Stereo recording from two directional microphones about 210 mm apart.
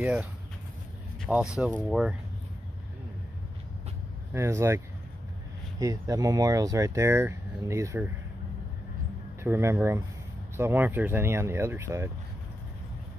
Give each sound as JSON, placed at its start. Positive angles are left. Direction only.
{"t": 0.0, "sound": "speech", "side_deg": -5}
{"t": 4.3, "sound": "speech", "side_deg": -15}
{"t": 9.4, "sound": "speech", "side_deg": -10}